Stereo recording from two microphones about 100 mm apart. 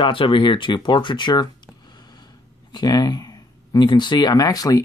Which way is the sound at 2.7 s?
45° left (ahead or behind).